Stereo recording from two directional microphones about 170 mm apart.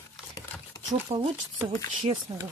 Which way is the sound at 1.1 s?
40° right (ahead or behind).